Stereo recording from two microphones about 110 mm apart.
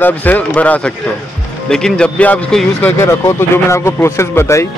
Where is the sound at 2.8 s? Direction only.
20° left (ahead or behind).